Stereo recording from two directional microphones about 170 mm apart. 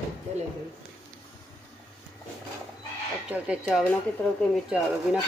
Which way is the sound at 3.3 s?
5° right (ahead or behind).